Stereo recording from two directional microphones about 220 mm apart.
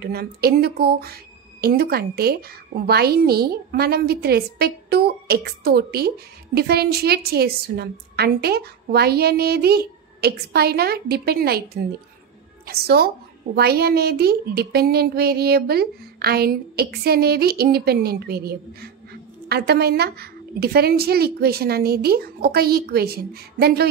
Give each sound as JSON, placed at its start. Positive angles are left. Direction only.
{"t": 0.0, "sound": "speech", "side_deg": -45}